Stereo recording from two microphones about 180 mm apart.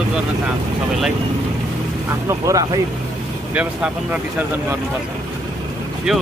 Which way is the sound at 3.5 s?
5° right (ahead or behind).